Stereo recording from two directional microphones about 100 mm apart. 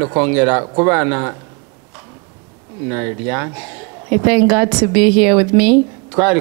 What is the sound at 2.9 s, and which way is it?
Speech, 15° right (ahead or behind).